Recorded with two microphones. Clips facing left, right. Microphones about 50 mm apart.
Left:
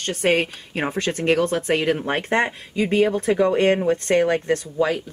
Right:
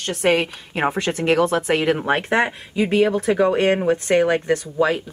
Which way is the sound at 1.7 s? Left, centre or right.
Centre.